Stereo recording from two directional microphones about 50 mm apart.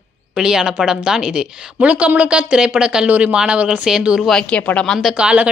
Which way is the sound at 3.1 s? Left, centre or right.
Right.